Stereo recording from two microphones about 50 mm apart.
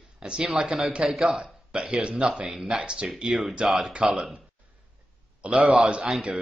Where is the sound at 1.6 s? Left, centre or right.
Right.